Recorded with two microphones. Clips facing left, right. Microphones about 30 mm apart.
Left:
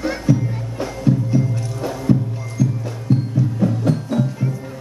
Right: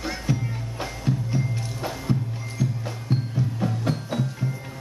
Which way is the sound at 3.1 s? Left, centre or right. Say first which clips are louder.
Left 8 dB; right.